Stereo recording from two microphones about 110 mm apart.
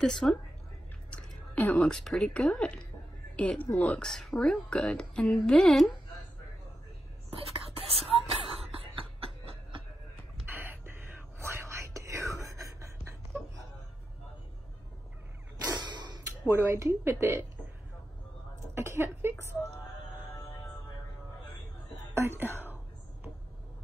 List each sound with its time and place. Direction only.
0.0 s a woman's voice: 5° left (ahead or behind)
7.2 s whispering: 60° right (ahead or behind)
8.9 s a sound: 55° right (ahead or behind)
10.4 s whispering: 15° right (ahead or behind)
15.8 s whip: 40° right (ahead or behind)
16.4 s speech: 25° right (ahead or behind)
18.8 s a sound: 25° right (ahead or behind)
22.1 s speech: 20° right (ahead or behind)